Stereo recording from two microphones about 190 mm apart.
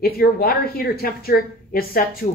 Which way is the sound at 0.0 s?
50° left (ahead or behind).